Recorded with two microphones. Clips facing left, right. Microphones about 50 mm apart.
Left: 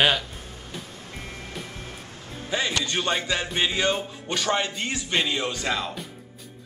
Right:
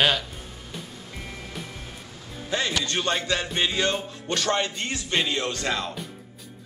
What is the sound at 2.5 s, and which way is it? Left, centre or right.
Speech, centre.